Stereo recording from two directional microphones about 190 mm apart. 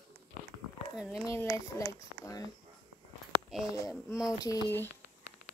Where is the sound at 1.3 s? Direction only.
15° left (ahead or behind).